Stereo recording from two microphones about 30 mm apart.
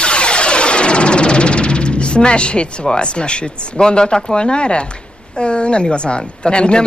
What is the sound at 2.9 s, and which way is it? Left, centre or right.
Speech, left.